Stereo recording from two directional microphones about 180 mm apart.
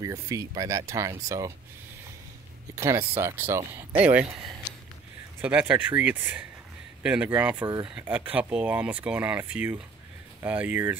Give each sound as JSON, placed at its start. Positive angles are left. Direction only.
{"t": 0.0, "sound": "speech", "side_deg": -20}
{"t": 2.7, "sound": "speech", "side_deg": -15}
{"t": 5.4, "sound": "speech", "side_deg": -5}
{"t": 7.6, "sound": "speech", "side_deg": -25}
{"t": 7.9, "sound": "speech", "side_deg": -10}